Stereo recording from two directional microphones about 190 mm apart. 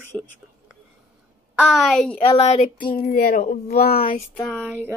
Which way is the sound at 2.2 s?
35° left (ahead or behind).